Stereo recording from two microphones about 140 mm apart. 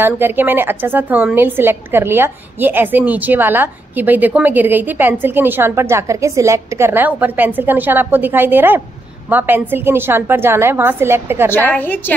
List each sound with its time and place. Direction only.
0.0 s a woman's voice: 15° right (ahead or behind)
11.7 s a woman's voice: 10° left (ahead or behind)